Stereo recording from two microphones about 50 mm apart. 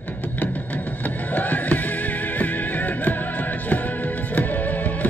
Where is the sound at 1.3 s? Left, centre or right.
Left.